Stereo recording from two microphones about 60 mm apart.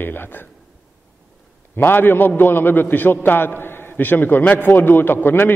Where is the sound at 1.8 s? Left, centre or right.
Left.